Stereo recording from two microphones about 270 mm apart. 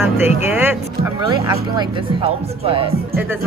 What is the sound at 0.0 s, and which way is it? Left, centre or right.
Speech, centre.